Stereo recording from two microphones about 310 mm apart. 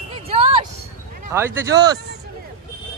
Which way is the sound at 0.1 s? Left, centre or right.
Centre.